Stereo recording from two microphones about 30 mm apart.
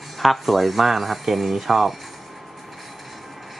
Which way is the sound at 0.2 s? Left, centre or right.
Centre.